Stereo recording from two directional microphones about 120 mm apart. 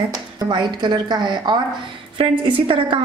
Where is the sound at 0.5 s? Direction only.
40° right (ahead or behind).